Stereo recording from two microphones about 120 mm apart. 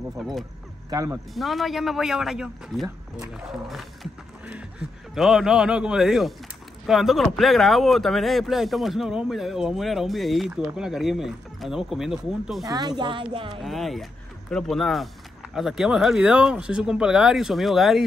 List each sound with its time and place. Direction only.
0.2 s speech: centre (ahead or behind)
0.8 s speech: 30° right (ahead or behind)
1.3 s speech: centre (ahead or behind)
12.6 s speech: 35° right (ahead or behind)
13.6 s speech: centre (ahead or behind)